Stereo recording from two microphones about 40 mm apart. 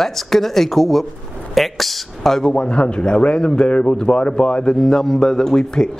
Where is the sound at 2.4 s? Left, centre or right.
Left.